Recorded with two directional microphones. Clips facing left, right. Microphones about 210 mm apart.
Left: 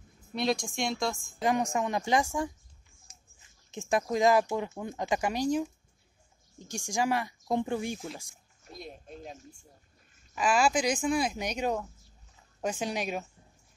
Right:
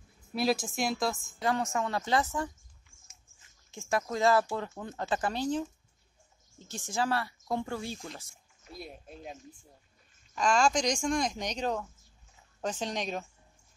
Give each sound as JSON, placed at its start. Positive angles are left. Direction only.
{"t": 0.3, "sound": "a woman's voice", "side_deg": -5}
{"t": 1.4, "sound": "speech", "side_deg": 15}
{"t": 3.7, "sound": "speech", "side_deg": 20}
{"t": 8.7, "sound": "speech", "side_deg": -5}
{"t": 10.3, "sound": "speech", "side_deg": 5}